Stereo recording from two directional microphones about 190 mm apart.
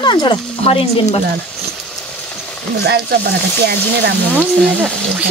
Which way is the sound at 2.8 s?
60° right (ahead or behind).